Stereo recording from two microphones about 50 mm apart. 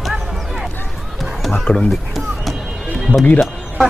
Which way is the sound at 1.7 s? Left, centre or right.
Left.